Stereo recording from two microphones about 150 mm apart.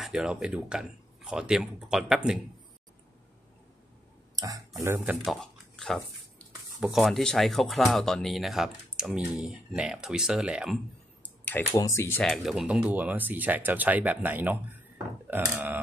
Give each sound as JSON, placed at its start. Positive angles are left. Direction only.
{"t": 0.0, "sound": "speech", "side_deg": -5}
{"t": 4.4, "sound": "speech", "side_deg": -25}
{"t": 5.2, "sound": "a sound", "side_deg": 0}
{"t": 6.8, "sound": "speech", "side_deg": 0}
{"t": 11.7, "sound": "speech", "side_deg": 20}
{"t": 12.3, "sound": "speech", "side_deg": -5}